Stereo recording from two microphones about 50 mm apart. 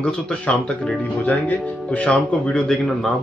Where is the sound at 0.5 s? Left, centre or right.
Left.